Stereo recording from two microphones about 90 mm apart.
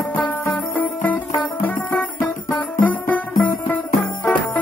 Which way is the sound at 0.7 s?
20° left (ahead or behind).